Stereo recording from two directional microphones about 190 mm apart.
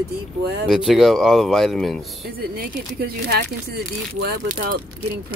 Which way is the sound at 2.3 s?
50° right (ahead or behind).